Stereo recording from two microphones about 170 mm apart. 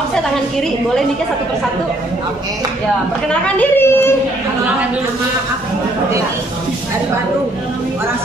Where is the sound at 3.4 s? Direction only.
10° left (ahead or behind).